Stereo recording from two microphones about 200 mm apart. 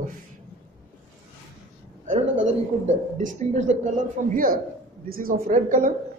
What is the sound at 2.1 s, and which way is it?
A woman's voice, 40° right (ahead or behind).